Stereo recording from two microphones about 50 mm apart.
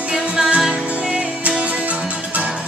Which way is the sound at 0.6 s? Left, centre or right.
Centre.